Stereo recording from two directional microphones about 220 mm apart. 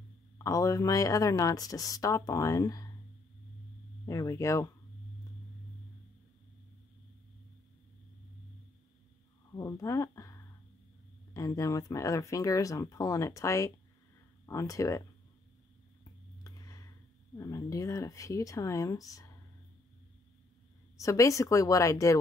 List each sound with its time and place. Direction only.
0.4 s speech: 15° left (ahead or behind)
4.0 s speech: 15° left (ahead or behind)
9.5 s a sound: 15° left (ahead or behind)
11.3 s speech: 15° left (ahead or behind)
16.0 s a sound: 15° left (ahead or behind)
17.4 s speech: 15° left (ahead or behind)
21.0 s speech: 15° left (ahead or behind)